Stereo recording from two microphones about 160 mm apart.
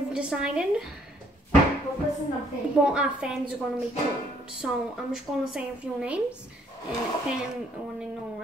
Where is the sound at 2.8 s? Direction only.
5° right (ahead or behind).